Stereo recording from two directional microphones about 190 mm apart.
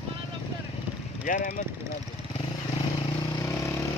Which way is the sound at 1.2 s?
40° left (ahead or behind).